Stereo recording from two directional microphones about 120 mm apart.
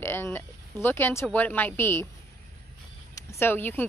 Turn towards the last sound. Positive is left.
turn(degrees=15)  # may be behind; listen again after turning